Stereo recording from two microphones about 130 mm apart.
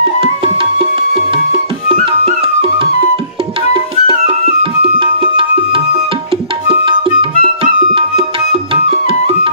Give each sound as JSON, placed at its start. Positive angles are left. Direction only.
{"t": 0.0, "sound": "music", "side_deg": -45}